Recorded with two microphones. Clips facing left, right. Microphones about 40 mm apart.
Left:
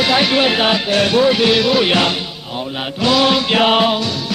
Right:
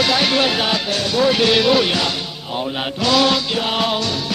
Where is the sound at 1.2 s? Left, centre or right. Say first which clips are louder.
Left 2 dB; centre.